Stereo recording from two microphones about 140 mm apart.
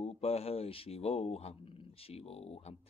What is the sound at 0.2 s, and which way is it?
Mantra, 45° left (ahead or behind).